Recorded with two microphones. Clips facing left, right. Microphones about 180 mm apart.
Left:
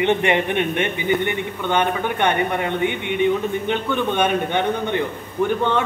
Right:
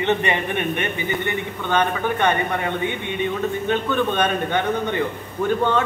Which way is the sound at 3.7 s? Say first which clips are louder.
Right 2 dB; 15° left (ahead or behind).